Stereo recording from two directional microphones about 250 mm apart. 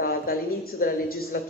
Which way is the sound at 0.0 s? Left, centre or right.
Left.